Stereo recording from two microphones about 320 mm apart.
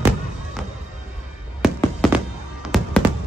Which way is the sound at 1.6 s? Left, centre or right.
Centre.